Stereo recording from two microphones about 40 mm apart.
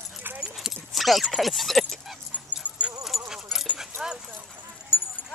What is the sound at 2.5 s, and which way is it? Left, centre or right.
Dog, right.